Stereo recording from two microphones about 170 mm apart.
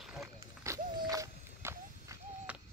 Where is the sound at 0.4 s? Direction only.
20° right (ahead or behind).